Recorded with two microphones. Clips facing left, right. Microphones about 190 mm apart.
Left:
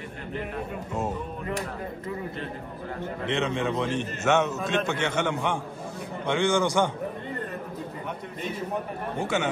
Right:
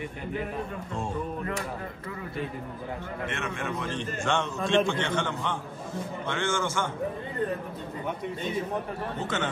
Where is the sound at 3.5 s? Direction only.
20° left (ahead or behind).